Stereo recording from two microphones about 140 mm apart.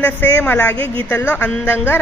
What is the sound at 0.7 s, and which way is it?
Speech, 40° right (ahead or behind).